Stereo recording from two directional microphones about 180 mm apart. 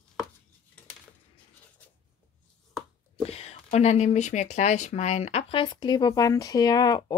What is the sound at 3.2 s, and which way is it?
Speech, 35° left (ahead or behind).